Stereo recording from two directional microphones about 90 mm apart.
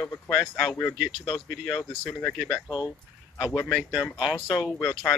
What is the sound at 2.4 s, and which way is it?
Speech, centre (ahead or behind).